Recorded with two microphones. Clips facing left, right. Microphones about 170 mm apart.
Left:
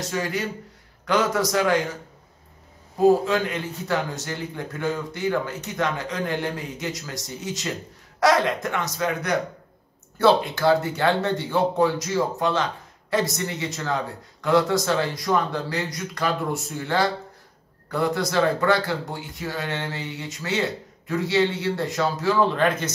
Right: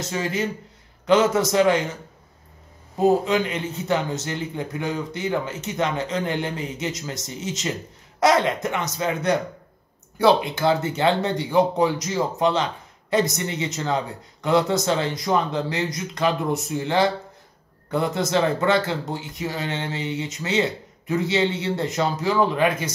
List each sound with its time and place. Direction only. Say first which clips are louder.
0.1 s a man's voice: right 3 dB; 20° right (ahead or behind)
3.0 s a man's voice: left 1 dB; 20° right (ahead or behind)